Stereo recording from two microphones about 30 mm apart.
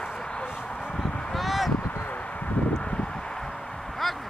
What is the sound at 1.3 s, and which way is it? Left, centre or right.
Honk, centre.